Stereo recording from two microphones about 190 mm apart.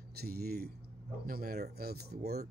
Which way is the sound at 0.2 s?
55° right (ahead or behind).